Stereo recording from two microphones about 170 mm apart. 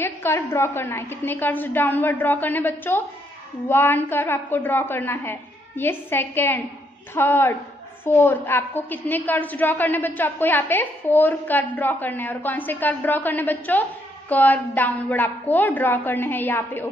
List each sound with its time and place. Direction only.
0.0 s a woman's voice: 15° left (ahead or behind)